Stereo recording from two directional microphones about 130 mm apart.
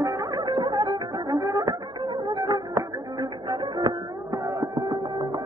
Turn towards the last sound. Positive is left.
turn(degrees=-35)  # may be behind; listen again after turning